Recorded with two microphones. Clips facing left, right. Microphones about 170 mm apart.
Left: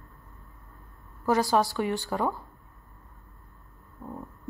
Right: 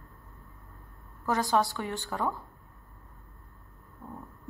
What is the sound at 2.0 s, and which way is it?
Speech, 20° left (ahead or behind).